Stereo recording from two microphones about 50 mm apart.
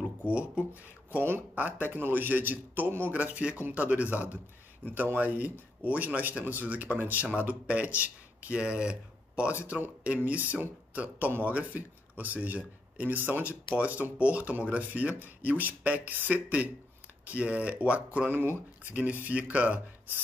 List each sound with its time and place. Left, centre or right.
0.3 s speech: right
1.5 s speech: right
18.3 s speech: right
18.9 s speech: right